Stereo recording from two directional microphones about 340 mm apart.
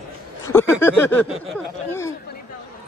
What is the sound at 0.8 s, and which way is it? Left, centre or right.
Speech, centre.